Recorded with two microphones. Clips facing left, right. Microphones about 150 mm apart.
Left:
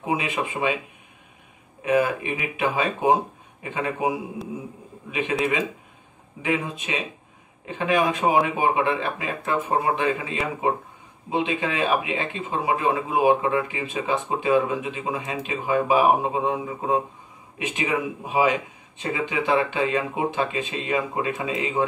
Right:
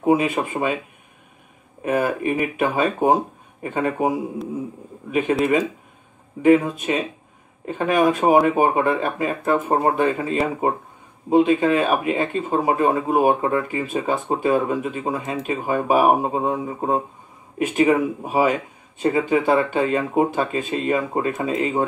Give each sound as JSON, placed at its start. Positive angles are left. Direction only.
{"t": 0.0, "sound": "speech", "side_deg": -45}
{"t": 1.9, "sound": "speech", "side_deg": -50}
{"t": 5.4, "sound": "speech", "side_deg": -45}